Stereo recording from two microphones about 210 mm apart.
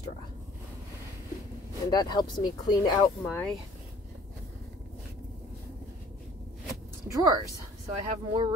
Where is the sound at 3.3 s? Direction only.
10° left (ahead or behind).